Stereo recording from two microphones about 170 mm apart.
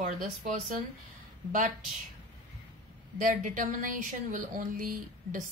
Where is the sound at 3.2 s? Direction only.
55° right (ahead or behind).